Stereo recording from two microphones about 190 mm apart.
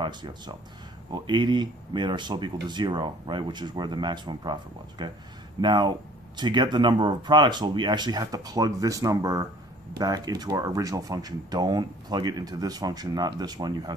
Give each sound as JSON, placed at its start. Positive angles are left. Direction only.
{"t": 0.0, "sound": "speech", "side_deg": -25}